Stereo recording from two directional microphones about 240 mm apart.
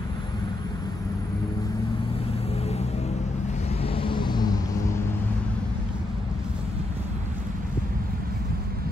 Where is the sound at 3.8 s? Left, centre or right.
Centre.